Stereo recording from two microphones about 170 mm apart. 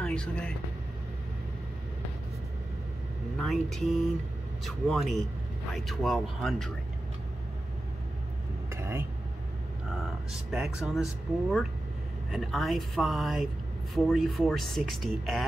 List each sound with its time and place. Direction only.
0.0 s speech: 5° left (ahead or behind)
3.3 s speech: centre (ahead or behind)
8.6 s vehicle: 15° right (ahead or behind)
10.5 s speech: 5° right (ahead or behind)
12.3 s speech: centre (ahead or behind)